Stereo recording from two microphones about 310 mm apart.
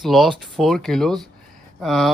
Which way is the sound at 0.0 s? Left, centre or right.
Centre.